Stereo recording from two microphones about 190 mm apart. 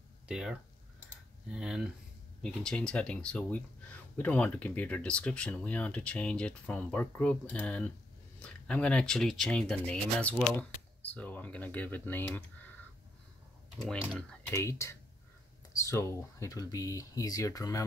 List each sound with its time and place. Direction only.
0.3 s a sound: 5° right (ahead or behind)
1.5 s speech: 5° right (ahead or behind)
13.7 s speech: 5° left (ahead or behind)